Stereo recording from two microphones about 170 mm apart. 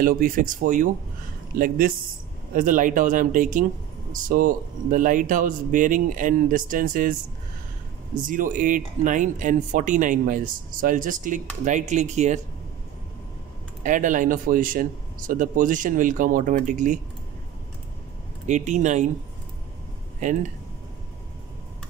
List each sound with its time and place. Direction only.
0.0 s speech: 55° right (ahead or behind)
8.3 s speech: 50° right (ahead or behind)
13.8 s speech: 50° right (ahead or behind)
18.5 s speech: 45° right (ahead or behind)
20.2 s speech: 45° right (ahead or behind)